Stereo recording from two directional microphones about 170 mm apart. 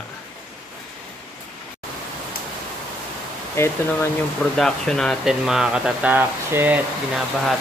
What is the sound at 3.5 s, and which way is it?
Speech, 15° left (ahead or behind).